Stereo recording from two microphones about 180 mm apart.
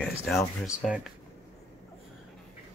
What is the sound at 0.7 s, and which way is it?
Speech, 5° right (ahead or behind).